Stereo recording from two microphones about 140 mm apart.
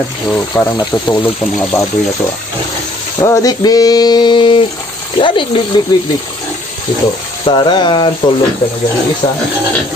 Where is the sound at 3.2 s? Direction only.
25° left (ahead or behind).